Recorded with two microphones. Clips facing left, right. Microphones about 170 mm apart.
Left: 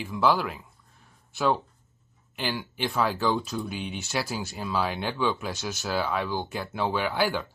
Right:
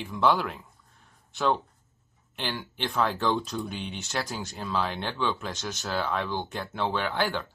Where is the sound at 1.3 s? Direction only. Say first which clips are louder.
Left 1 dB; 5° left (ahead or behind).